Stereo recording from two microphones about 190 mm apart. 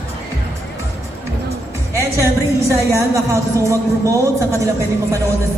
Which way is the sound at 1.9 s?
15° right (ahead or behind).